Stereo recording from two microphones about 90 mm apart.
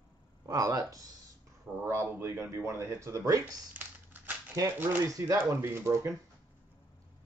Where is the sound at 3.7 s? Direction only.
20° right (ahead or behind).